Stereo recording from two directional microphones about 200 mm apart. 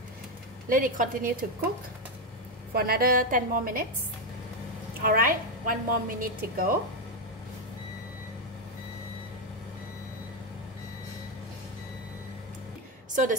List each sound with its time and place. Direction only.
0.7 s a woman's voice: 45° right (ahead or behind)
2.7 s a woman's voice: 50° right (ahead or behind)
5.0 s a woman's voice: 45° right (ahead or behind)
13.1 s a woman's voice: 40° right (ahead or behind)